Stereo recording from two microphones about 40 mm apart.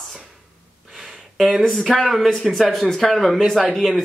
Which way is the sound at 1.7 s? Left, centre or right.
Centre.